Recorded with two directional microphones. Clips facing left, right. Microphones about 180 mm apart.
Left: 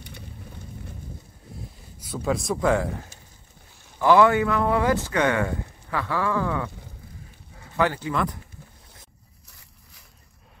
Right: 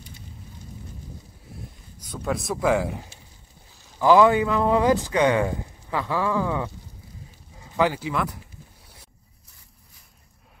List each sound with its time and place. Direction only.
2.0 s speech: 5° left (ahead or behind)